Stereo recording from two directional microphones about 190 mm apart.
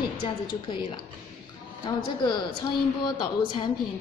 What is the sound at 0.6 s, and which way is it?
A woman's voice, 25° left (ahead or behind).